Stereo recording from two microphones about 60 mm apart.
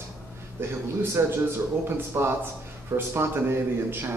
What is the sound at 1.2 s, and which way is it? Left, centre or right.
A man's voice, right.